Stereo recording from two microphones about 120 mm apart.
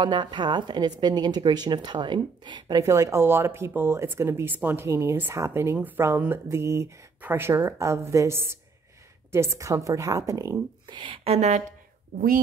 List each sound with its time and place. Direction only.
0.0 s a woman's voice: 40° right (ahead or behind)
2.8 s speech: 25° right (ahead or behind)
10.9 s speech: 40° right (ahead or behind)
11.2 s speech: 65° right (ahead or behind)